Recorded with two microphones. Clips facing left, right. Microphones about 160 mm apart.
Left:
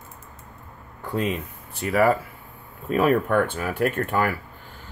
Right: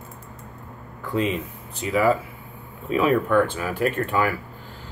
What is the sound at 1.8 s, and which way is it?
Speech, 55° left (ahead or behind).